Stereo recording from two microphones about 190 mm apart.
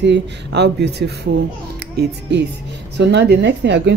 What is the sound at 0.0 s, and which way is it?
Speech, 65° right (ahead or behind).